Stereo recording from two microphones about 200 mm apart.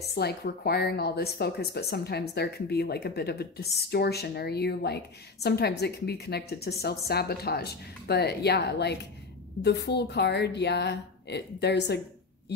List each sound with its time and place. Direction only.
0.1 s a woman's voice: 55° left (ahead or behind)